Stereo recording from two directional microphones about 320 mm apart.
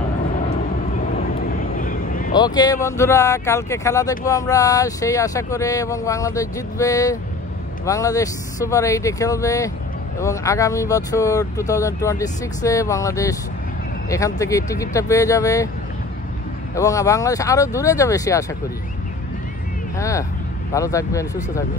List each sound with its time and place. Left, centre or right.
0.9 s vehicle: left
2.3 s speech: centre
16.7 s speech: centre
20.0 s speech: centre